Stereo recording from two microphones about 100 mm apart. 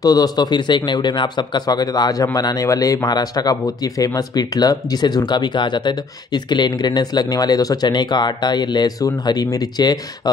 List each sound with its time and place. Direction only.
0.0 s speech: 40° left (ahead or behind)